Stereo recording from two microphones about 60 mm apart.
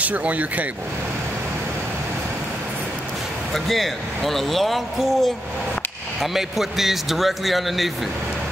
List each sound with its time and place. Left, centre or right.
0.0 s speech: right
3.5 s speech: centre
6.3 s speech: centre